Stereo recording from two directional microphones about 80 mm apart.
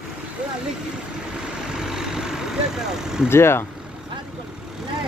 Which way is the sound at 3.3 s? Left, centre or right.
Left.